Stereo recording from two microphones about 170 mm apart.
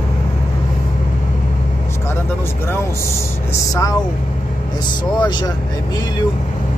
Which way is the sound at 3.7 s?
20° left (ahead or behind).